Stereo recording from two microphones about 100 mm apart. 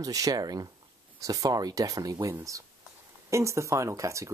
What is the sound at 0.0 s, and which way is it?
Speech, 35° right (ahead or behind).